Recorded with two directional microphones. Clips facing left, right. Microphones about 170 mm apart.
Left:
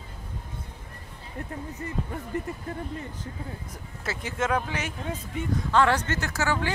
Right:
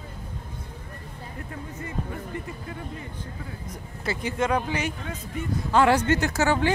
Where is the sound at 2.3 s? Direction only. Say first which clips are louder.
Left 7 dB; 45° left (ahead or behind).